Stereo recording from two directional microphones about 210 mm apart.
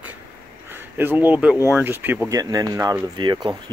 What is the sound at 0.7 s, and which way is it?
Speech, 10° right (ahead or behind).